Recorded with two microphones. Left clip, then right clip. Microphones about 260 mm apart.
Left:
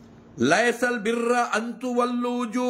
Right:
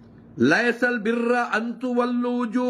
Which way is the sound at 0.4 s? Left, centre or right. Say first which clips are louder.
Right 1 dB; centre.